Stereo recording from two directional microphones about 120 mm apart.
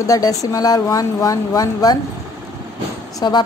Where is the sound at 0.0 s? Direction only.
30° left (ahead or behind).